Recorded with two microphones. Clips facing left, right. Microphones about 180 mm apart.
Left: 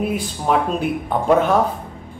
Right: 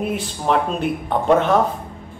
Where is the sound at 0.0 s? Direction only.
5° left (ahead or behind).